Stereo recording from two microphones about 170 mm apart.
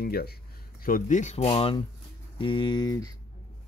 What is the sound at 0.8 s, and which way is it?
Speech, 50° left (ahead or behind).